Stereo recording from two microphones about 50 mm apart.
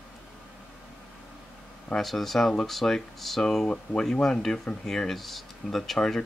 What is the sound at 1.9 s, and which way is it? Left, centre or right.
Speech, centre.